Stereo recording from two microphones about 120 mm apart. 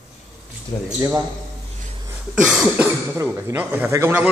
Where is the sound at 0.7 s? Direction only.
40° left (ahead or behind).